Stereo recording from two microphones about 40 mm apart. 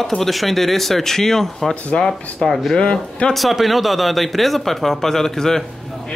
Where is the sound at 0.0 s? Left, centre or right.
Centre.